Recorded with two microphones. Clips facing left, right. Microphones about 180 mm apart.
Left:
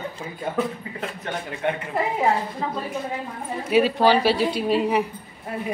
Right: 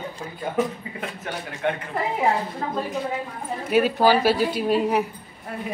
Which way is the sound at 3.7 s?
Centre (ahead or behind).